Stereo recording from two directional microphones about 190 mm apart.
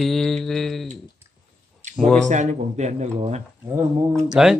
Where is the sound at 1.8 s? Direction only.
40° right (ahead or behind).